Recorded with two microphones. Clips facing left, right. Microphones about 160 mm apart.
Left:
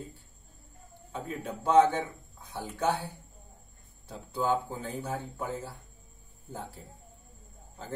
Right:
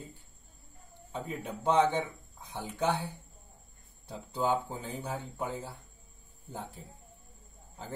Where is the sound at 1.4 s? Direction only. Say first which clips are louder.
Left 4 dB; 20° right (ahead or behind).